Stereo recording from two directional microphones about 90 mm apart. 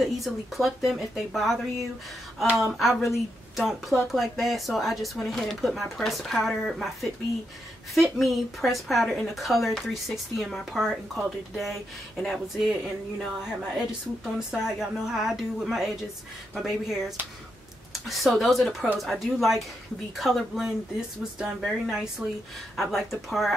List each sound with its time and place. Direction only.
0.0 s speech: centre (ahead or behind)